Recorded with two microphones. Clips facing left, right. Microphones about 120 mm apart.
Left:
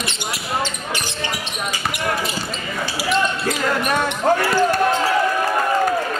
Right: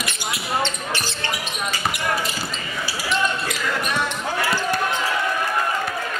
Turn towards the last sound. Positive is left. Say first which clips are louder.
# left 7 dB
turn(degrees=50)  # may be behind; listen again after turning